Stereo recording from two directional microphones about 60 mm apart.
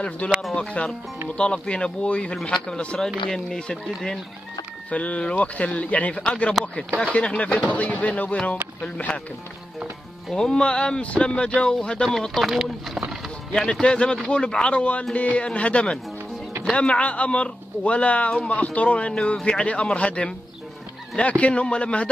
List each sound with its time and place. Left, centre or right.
0.2 s speech: left
10.3 s speech: centre
12.4 s speech: centre
13.5 s speech: centre